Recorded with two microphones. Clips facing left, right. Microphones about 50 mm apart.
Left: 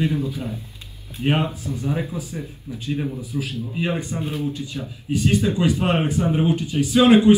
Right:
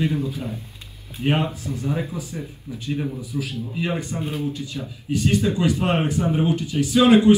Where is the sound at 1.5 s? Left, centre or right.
Right.